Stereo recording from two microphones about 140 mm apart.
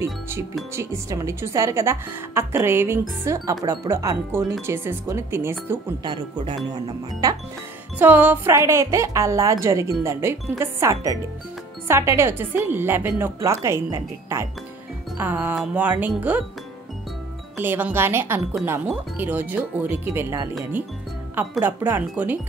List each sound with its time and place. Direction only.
0.7 s a woman's voice: 20° right (ahead or behind)
6.0 s a woman's voice: 30° right (ahead or behind)
8.0 s a woman's voice: 10° right (ahead or behind)
17.6 s a woman's voice: 15° right (ahead or behind)